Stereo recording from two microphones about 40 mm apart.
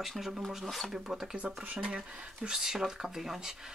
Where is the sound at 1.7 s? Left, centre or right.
Right; by 3.5 s centre.